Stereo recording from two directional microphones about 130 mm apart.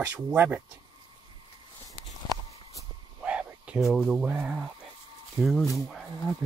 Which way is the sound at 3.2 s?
10° right (ahead or behind).